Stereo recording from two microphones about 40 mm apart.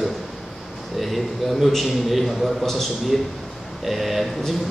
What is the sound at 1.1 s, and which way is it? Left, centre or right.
A man's voice, centre.